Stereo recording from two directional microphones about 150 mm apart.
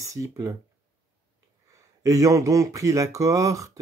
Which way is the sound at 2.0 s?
20° right (ahead or behind).